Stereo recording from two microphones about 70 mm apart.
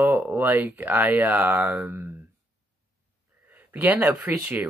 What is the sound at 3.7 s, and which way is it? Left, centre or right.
Speech, right.